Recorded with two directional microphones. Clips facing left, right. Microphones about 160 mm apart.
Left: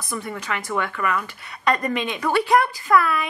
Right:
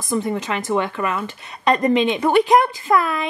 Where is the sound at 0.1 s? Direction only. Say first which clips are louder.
Right 7 dB; 25° right (ahead or behind).